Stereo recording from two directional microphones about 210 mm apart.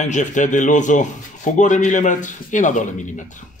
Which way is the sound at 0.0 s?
35° left (ahead or behind).